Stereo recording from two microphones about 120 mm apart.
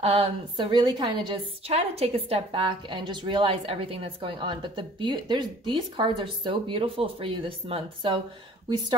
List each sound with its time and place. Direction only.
0.0 s a woman's voice: 55° right (ahead or behind)
0.6 s a woman's voice: 40° right (ahead or behind)
1.7 s a woman's voice: 60° right (ahead or behind)